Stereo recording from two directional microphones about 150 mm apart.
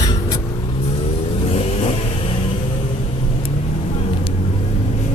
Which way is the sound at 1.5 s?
40° left (ahead or behind).